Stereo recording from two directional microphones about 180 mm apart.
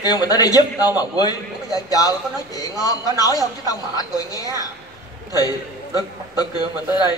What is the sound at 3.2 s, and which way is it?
A woman's voice, 20° left (ahead or behind).